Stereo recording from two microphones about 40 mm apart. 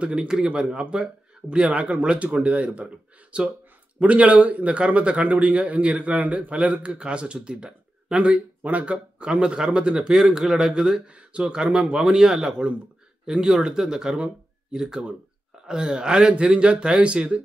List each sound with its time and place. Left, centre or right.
0.0 s speech: right
1.7 s speech: right
8.6 s speech: right
9.2 s speech: right
10.7 s a man's voice: right